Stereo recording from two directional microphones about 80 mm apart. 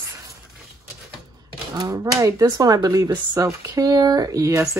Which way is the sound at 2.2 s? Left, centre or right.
Right.